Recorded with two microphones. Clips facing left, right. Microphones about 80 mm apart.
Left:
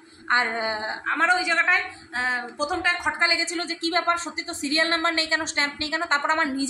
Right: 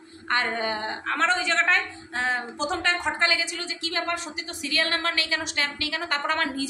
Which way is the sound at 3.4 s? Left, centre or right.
Left.